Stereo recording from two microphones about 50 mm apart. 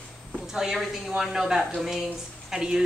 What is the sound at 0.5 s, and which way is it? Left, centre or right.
A woman's voice, centre.